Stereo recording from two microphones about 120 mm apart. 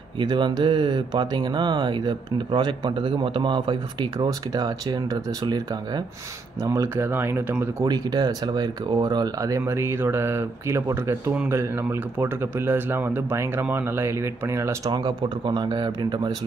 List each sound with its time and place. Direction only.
0.2 s speech: 40° right (ahead or behind); by 7.7 s 20° right (ahead or behind)
7.8 s speech: 35° right (ahead or behind)
14.9 s speech: 40° right (ahead or behind)